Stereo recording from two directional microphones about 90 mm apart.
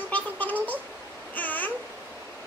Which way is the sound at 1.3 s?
20° left (ahead or behind).